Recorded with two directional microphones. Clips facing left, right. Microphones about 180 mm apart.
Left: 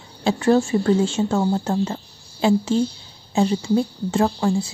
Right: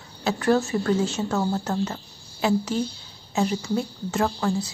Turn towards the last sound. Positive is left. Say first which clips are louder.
# left 4 dB
turn(degrees=25)  # may be behind; listen again after turning